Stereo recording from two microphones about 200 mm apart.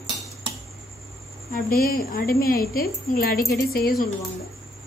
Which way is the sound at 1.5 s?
45° left (ahead or behind).